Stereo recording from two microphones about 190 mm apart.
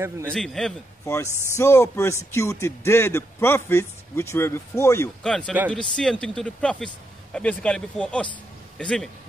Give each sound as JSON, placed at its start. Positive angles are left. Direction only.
{"t": 0.3, "sound": "speech", "side_deg": 5}
{"t": 1.0, "sound": "a man's voice", "side_deg": 15}
{"t": 5.2, "sound": "a man's voice", "side_deg": 5}